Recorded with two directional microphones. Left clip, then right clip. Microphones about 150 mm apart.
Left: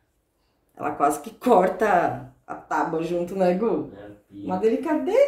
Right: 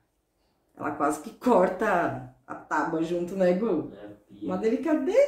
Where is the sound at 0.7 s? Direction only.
30° left (ahead or behind).